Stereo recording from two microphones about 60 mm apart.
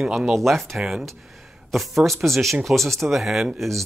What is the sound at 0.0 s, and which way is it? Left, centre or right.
Speech, centre.